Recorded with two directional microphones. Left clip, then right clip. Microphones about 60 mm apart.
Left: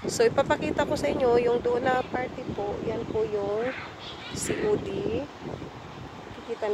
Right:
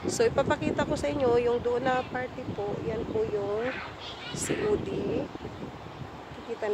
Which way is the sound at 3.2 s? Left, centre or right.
Left.